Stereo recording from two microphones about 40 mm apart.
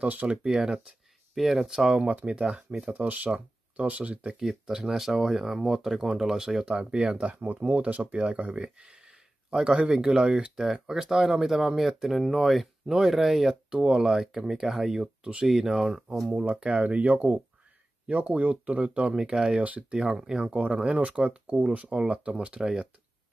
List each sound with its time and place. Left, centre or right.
0.0 s speech: right
0.4 s speech: centre
1.3 s speech: centre
2.0 s speech: right
2.3 s speech: right
2.8 s speech: right
4.7 s speech: centre
6.7 s speech: right
7.3 s speech: right; by 13.6 s centre
13.7 s speech: centre
16.3 s speech: right
19.9 s speech: right
20.4 s speech: right
22.6 s speech: centre